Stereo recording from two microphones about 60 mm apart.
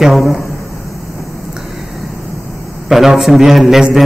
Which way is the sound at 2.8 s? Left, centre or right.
Centre.